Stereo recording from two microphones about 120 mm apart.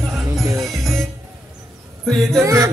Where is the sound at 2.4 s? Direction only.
25° right (ahead or behind).